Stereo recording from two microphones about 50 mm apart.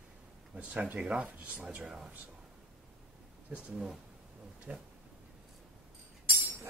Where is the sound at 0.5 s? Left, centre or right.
Right.